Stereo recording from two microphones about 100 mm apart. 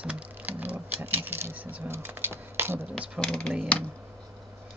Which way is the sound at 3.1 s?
10° left (ahead or behind).